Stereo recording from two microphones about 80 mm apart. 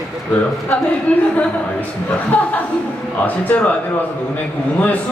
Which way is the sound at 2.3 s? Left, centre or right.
Centre.